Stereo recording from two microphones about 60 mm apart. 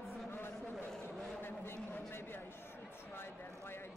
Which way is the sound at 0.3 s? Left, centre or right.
Left.